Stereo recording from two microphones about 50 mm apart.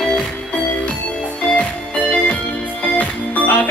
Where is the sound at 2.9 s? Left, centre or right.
Left.